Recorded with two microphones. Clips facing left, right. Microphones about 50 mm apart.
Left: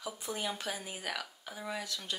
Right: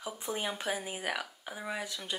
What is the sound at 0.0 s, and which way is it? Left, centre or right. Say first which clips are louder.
Speech: right 2 dB; right.